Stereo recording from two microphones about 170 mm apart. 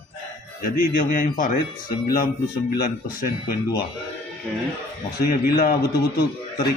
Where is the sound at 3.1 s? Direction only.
55° left (ahead or behind).